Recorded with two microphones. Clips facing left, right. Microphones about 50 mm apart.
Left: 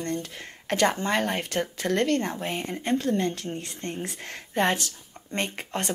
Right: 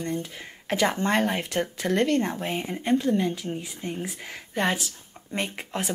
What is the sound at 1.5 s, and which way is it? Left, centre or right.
Speech, centre.